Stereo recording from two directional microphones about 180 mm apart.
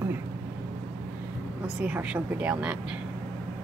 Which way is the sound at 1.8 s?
10° right (ahead or behind).